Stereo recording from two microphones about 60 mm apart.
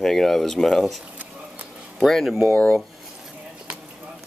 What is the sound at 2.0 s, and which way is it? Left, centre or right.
Speech, centre.